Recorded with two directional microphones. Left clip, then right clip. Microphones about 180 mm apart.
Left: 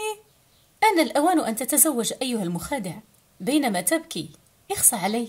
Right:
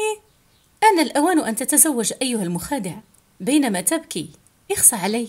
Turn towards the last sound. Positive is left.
turn(degrees=-25)  # may be behind; listen again after turning